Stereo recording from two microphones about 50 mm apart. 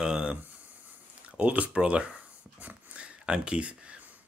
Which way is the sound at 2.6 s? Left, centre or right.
Right.